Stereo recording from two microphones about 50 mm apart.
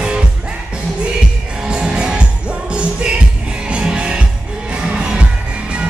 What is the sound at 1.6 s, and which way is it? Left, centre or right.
Music, centre.